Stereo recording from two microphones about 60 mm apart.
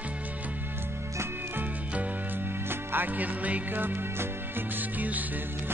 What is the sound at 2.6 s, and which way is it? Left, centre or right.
Music, right.